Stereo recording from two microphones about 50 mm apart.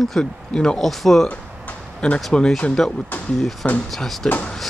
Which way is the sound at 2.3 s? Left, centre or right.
Centre.